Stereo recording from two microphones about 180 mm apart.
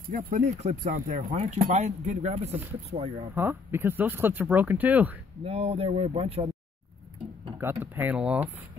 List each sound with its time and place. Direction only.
0.1 s speech: 50° right (ahead or behind); by 3.3 s 35° right (ahead or behind)
3.3 s speech: 10° right (ahead or behind)
5.4 s speech: 35° right (ahead or behind)
7.5 s speech: 10° right (ahead or behind)